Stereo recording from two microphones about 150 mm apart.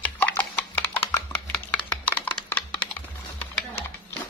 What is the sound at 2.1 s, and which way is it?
Computer keyboard, 10° left (ahead or behind).